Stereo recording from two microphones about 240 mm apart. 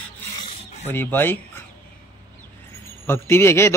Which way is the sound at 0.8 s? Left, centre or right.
Centre.